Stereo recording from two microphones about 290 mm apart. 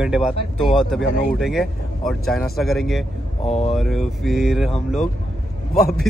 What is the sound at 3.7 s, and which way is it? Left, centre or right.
Speech, centre.